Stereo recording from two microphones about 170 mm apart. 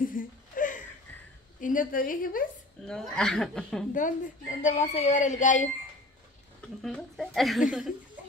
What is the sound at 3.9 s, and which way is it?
A woman's voice, 50° left (ahead or behind).